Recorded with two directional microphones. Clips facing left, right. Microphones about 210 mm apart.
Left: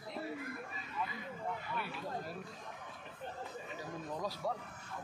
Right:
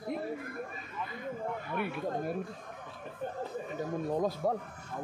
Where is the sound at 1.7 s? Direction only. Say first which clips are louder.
Right 8 dB; 55° right (ahead or behind).